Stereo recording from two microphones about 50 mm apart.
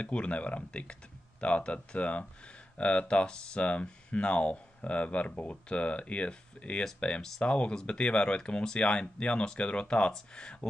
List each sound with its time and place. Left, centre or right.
0.0 s speech: left